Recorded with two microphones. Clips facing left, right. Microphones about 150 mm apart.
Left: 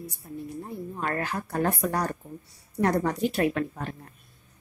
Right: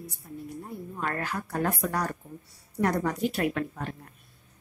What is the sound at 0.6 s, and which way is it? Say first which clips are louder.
A woman's voice: left 1 dB; 35° left (ahead or behind).